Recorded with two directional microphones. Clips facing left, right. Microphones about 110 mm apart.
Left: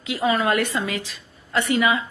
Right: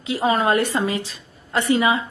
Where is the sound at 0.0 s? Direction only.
35° right (ahead or behind).